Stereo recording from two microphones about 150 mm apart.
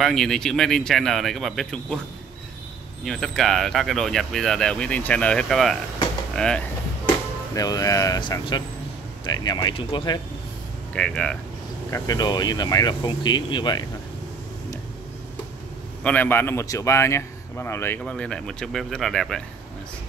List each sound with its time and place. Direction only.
0.0 s speech: 5° left (ahead or behind)
3.1 s speech: centre (ahead or behind)
7.5 s speech: 25° left (ahead or behind)
11.0 s speech: 5° left (ahead or behind)
11.9 s speech: 25° left (ahead or behind)
16.0 s speech: 10° left (ahead or behind)